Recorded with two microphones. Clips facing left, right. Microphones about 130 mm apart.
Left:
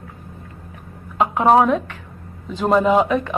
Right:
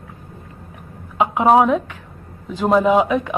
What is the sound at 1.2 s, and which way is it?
Speech, 10° right (ahead or behind).